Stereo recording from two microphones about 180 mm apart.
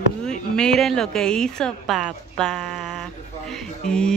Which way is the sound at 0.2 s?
5° left (ahead or behind).